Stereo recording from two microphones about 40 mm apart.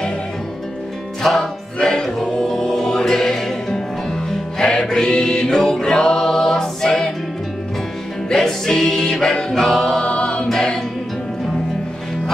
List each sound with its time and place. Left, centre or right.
1.2 s music: centre
1.8 s music: centre
8.3 s music: centre
9.5 s choir: centre; by 10.4 s left
10.5 s music: centre